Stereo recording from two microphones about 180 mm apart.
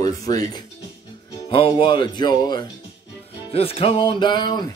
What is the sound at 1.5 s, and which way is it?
Speech, 30° left (ahead or behind).